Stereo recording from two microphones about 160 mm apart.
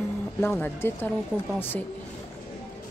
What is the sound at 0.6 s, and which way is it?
A woman's voice, 15° left (ahead or behind).